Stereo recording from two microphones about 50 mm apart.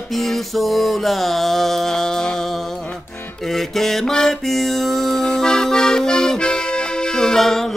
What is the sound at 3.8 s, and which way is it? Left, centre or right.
Music, centre.